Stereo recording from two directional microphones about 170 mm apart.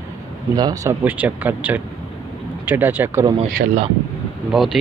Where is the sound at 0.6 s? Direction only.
20° right (ahead or behind).